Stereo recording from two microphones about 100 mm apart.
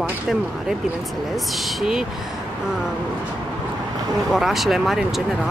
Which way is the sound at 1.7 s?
5° right (ahead or behind).